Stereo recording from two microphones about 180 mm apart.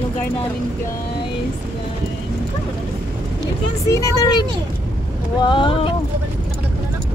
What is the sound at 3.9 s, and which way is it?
Speech, 20° left (ahead or behind).